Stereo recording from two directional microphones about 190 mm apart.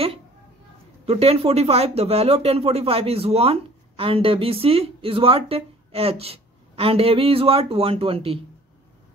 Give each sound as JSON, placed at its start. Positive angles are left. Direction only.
{"t": 1.0, "sound": "speech", "side_deg": -30}